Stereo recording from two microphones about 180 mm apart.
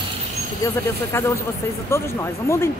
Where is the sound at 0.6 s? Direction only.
15° left (ahead or behind).